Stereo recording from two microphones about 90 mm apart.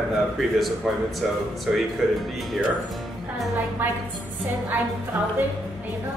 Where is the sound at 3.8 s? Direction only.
20° right (ahead or behind).